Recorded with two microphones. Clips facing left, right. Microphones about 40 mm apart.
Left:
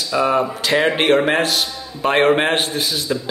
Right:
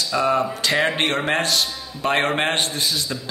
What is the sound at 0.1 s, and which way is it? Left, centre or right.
A man's voice, centre.